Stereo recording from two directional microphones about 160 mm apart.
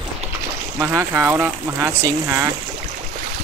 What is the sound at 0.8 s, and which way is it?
Speech, 15° right (ahead or behind).